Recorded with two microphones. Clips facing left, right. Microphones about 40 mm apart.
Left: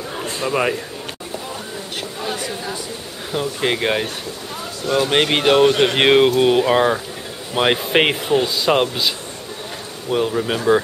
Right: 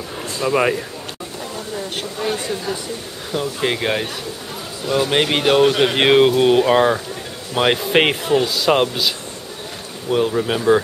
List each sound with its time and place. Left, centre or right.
0.4 s speech: centre
2.1 s chatter: centre
3.3 s speech: centre